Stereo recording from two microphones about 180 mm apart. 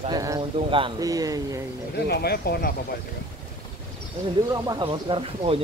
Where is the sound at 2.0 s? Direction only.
60° left (ahead or behind).